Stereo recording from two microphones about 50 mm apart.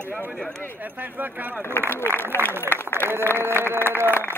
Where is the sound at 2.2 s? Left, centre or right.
Left.